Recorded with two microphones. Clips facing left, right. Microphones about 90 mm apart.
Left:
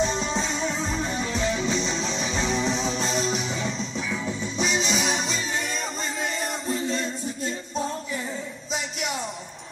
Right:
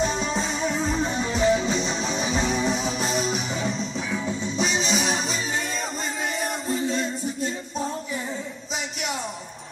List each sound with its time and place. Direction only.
0.0 s music: 5° right (ahead or behind)
1.0 s music: 20° right (ahead or behind)
2.1 s music: 10° right (ahead or behind)